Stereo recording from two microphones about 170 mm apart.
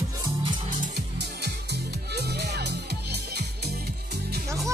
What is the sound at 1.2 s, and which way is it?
Music, 75° right (ahead or behind).